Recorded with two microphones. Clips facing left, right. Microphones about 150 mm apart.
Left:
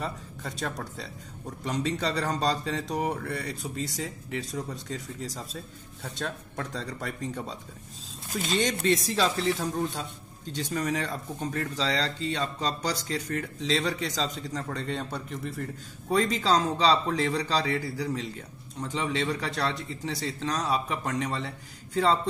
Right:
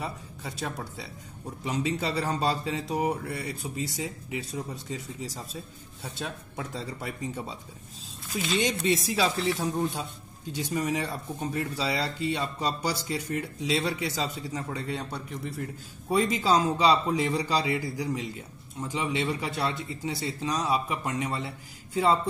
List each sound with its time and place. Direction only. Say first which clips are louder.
0.0 s a man's voice: left 1 dB; 5° right (ahead or behind)
8.3 s speech: even; 50° left (ahead or behind)
8.8 s a man's voice: left 1 dB; 10° right (ahead or behind)